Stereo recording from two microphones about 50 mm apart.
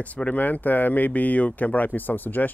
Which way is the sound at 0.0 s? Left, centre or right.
Left.